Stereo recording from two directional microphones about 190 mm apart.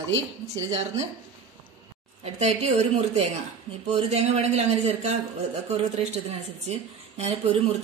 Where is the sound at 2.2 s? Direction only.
35° right (ahead or behind).